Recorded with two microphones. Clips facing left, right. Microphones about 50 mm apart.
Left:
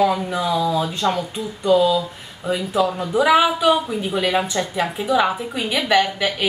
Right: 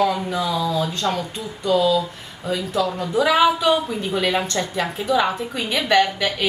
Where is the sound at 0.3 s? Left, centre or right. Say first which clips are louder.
Left 2 dB; centre.